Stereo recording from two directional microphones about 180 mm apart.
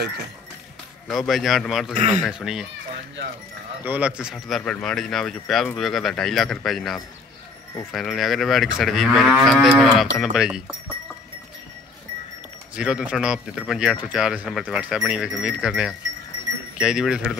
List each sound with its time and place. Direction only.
1.0 s speech: centre (ahead or behind)
3.8 s speech: 10° right (ahead or behind)
12.7 s speech: 5° right (ahead or behind)